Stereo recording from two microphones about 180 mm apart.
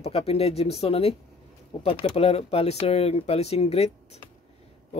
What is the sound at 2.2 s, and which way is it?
Speech, 35° left (ahead or behind).